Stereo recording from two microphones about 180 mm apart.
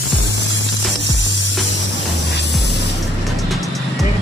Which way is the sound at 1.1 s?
85° left.